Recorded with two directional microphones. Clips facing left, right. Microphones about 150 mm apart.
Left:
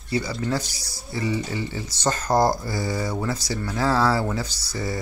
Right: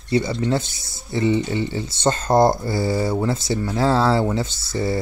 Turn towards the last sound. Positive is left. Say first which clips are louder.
# right 6 dB
turn(degrees=-25)  # may be behind; listen again after turning